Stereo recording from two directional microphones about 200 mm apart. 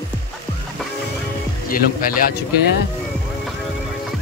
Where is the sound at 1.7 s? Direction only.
45° left (ahead or behind).